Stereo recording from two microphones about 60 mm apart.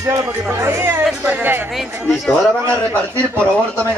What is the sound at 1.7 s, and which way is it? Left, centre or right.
Speech, centre.